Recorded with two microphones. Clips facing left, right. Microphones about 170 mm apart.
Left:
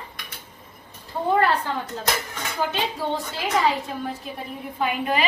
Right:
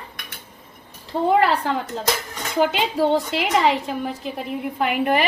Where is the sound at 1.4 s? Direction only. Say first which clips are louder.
Right 2 dB; 90° right.